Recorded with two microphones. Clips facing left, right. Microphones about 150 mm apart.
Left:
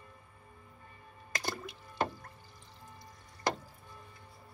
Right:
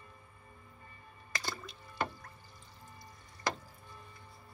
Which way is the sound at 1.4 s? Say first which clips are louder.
Left 4 dB; 40° left (ahead or behind).